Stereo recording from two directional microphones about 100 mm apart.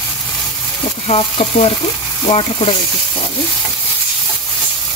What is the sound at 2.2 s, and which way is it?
Speech, 70° left (ahead or behind).